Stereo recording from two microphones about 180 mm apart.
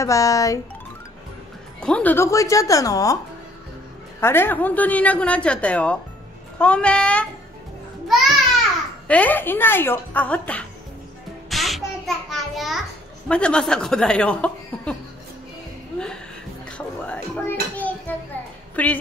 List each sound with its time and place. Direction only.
0.0 s a woman's voice: 15° left (ahead or behind)
1.8 s a woman's voice: 5° left (ahead or behind)
4.2 s a woman's voice: 10° left (ahead or behind)
9.0 s a woman's voice: 10° left (ahead or behind)
11.5 s child singing: centre (ahead or behind)
12.3 s a sound: centre (ahead or behind)
13.3 s speech: 5° left (ahead or behind)
16.7 s dishes: 5° left (ahead or behind)
18.8 s a woman's voice: 10° left (ahead or behind)